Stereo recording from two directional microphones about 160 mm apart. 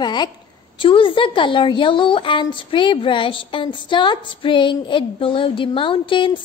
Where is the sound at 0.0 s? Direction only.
25° left (ahead or behind).